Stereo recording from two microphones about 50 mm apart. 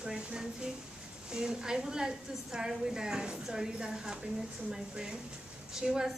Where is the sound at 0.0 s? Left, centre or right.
Centre.